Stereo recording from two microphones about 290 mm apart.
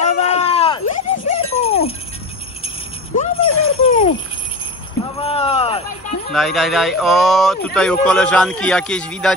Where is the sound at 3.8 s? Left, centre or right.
Centre.